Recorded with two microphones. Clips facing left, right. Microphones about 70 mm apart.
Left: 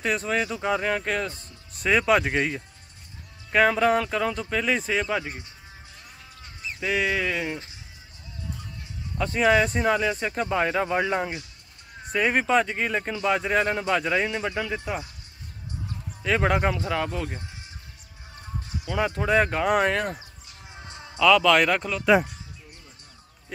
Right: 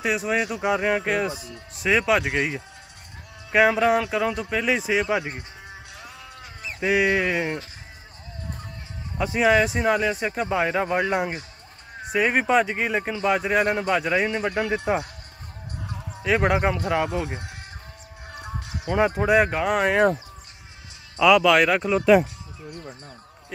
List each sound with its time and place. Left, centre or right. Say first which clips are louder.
0.0 s speech: right 2 dB; centre
1.3 s speech: right 11 dB; right
1.7 s speech: even; centre
5.7 s a sound: right 6 dB; right
6.8 s speech: right 4 dB; centre
9.2 s speech: right 1 dB; centre
14.9 s speech: right 7 dB; right
16.2 s speech: right 2 dB; centre
18.3 s music: right 2 dB; right
18.9 s speech: right 5 dB; right
19.1 s speech: right 3 dB; centre
21.2 s speech: right 2 dB; centre
22.7 s speech: right 12 dB; right